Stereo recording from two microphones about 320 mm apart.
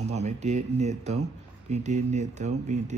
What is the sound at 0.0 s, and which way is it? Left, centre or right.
Speech, right.